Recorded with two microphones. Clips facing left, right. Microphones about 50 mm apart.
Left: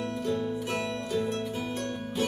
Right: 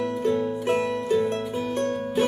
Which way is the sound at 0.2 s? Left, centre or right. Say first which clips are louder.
Right 5 dB; right.